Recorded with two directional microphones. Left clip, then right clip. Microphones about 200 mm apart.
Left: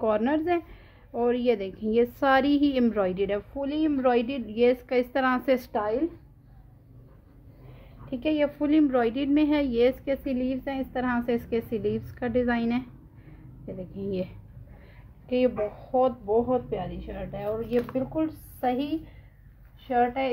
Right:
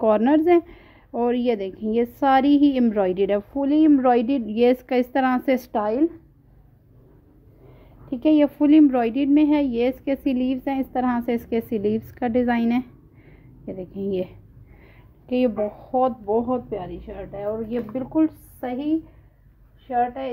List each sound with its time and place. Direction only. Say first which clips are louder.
0.0 s a woman's voice: right 7 dB; 35° right (ahead or behind)
5.7 s a woman's voice: right 5 dB; 45° right (ahead or behind)
8.1 s a woman's voice: right 7 dB; 45° right (ahead or behind); by 10.0 s 20° right (ahead or behind)
10.0 s a woman's voice: right 5 dB; 35° right (ahead or behind)